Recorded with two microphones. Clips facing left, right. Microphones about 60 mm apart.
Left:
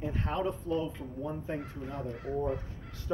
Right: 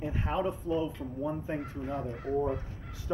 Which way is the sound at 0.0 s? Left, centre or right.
Centre.